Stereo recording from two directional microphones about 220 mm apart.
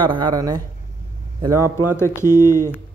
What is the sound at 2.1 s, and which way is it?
Speech, 15° left (ahead or behind).